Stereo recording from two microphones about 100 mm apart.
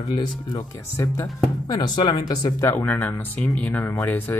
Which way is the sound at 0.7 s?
30° left (ahead or behind).